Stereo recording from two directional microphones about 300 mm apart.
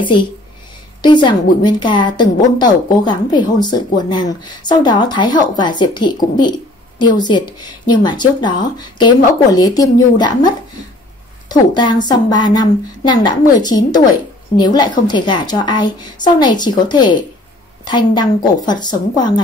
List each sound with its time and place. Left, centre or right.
0.0 s a woman's voice: centre